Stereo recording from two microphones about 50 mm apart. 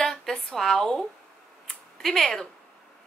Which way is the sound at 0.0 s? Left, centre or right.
Centre.